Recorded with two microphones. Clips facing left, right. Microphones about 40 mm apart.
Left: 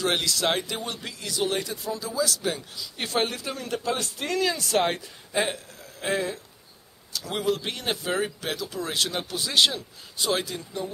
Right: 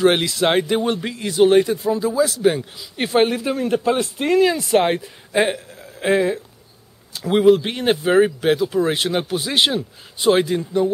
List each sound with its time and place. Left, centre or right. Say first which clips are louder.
0.0 s speech: right 9 dB; right